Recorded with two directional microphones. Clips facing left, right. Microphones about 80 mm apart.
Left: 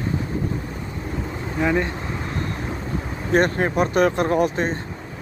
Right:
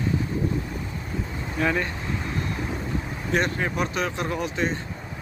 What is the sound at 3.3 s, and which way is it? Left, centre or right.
Speech, left.